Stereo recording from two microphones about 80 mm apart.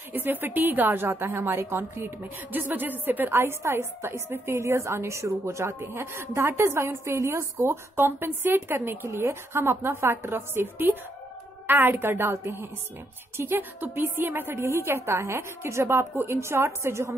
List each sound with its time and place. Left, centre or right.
0.1 s a woman's voice: right